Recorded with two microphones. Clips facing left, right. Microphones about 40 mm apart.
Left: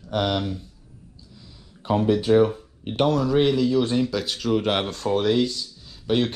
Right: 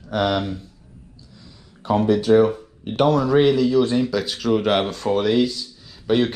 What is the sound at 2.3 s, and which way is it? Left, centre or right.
Speech, centre.